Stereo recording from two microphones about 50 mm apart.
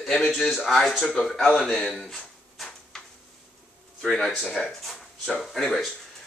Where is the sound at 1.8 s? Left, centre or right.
Centre.